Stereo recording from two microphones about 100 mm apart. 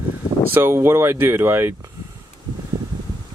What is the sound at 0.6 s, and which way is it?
Speech, 25° right (ahead or behind).